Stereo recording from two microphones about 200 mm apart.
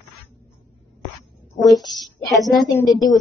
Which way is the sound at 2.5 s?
15° left (ahead or behind).